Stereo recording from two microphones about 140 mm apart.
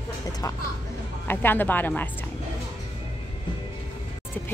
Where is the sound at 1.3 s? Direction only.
15° left (ahead or behind).